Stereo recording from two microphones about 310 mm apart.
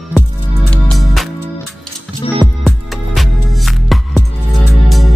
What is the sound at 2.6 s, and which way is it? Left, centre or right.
Music, centre.